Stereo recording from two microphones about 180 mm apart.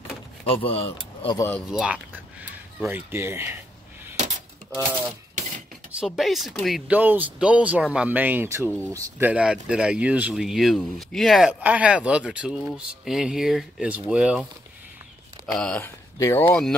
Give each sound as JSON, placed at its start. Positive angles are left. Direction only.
{"t": 0.5, "sound": "speech", "side_deg": 30}
{"t": 1.3, "sound": "speech", "side_deg": 15}
{"t": 1.7, "sound": "speech", "side_deg": -5}
{"t": 5.9, "sound": "speech", "side_deg": 0}
{"t": 15.4, "sound": "speech", "side_deg": 5}